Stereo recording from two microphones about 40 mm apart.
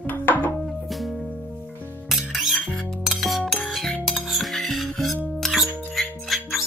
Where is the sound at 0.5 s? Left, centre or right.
Centre.